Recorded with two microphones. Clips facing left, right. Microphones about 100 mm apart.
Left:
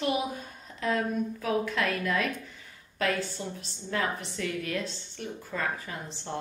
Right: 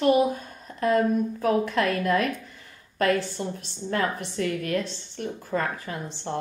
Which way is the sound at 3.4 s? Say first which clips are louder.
Right 6 dB; 50° right (ahead or behind).